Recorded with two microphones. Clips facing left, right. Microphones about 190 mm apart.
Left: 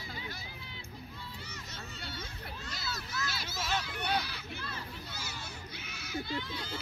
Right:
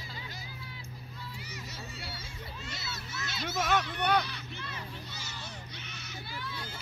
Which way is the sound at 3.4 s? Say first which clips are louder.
Right 10 dB; 60° right (ahead or behind).